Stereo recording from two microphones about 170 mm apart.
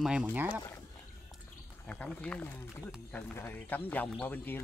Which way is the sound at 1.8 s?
5° left (ahead or behind).